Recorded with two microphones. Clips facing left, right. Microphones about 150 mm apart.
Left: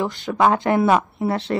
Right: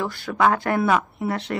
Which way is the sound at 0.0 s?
20° left (ahead or behind).